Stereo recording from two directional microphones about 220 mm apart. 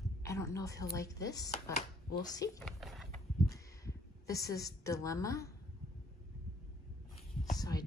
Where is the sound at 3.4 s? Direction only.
15° left (ahead or behind).